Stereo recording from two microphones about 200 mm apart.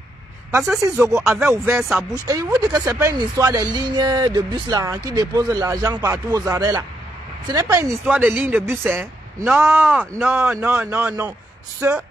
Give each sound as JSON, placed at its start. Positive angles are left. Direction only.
{"t": 0.5, "sound": "speech", "side_deg": -15}